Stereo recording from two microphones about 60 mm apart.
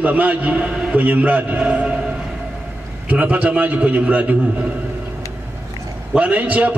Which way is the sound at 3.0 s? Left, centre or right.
Right.